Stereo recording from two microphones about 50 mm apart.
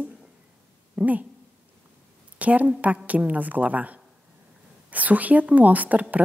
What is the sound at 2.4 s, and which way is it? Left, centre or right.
A woman's voice, right.